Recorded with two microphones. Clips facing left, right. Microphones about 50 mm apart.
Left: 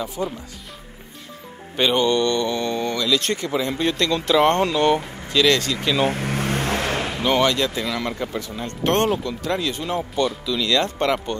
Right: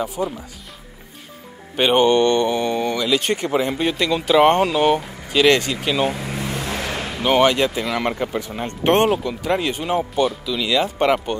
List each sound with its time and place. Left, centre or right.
0.2 s speech: centre
1.8 s speech: right
6.0 s vehicle: left
7.2 s speech: right
10.2 s speech: centre